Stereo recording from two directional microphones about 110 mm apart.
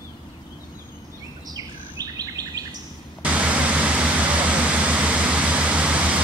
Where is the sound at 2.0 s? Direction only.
35° right (ahead or behind).